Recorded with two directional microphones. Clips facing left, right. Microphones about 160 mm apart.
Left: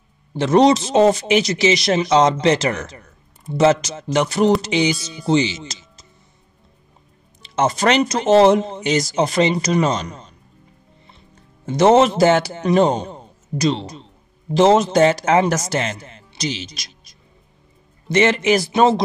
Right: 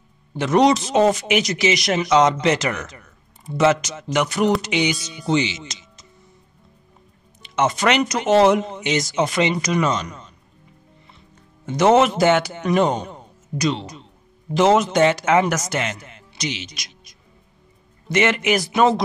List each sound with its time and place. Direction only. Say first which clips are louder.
0.4 s speech: left 3 dB; 30° left (ahead or behind)
7.4 s speech: left 2 dB; 35° left (ahead or behind)
11.6 s a man's voice: left 2 dB; 30° left (ahead or behind)